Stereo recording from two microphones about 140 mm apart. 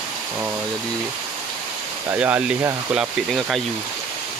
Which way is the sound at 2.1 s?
10° right (ahead or behind).